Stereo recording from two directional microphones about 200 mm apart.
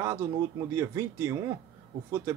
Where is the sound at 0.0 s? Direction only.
15° right (ahead or behind).